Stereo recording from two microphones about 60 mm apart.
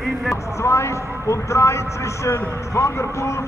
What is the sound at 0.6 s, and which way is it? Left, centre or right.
Speech, left.